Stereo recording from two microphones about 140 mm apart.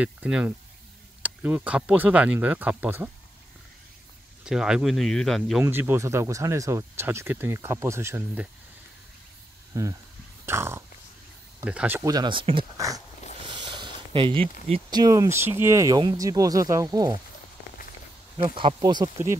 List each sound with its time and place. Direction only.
0.0 s speech: 10° right (ahead or behind)
4.5 s speech: 5° right (ahead or behind)
5.6 s speech: 15° right (ahead or behind)
9.7 s speech: 25° right (ahead or behind)
10.4 s a sound: 20° right (ahead or behind)
11.6 s speech: 10° right (ahead or behind)
12.0 s speech: 30° right (ahead or behind)
12.7 s speech: 25° right (ahead or behind)
13.4 s a sound: 35° right (ahead or behind)
14.9 s speech: 25° right (ahead or behind)
18.4 s speech: 40° right (ahead or behind)